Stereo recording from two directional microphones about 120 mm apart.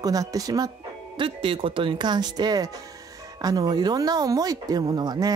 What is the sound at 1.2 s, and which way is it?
Speech, 45° right (ahead or behind).